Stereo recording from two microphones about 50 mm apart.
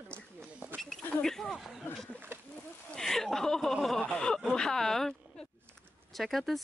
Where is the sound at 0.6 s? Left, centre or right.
Right.